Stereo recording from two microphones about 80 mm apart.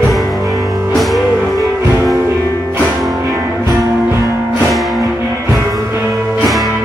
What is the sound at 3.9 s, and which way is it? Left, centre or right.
Music, right.